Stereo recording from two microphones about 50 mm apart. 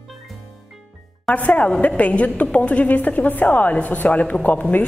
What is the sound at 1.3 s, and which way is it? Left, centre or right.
A woman's voice, left.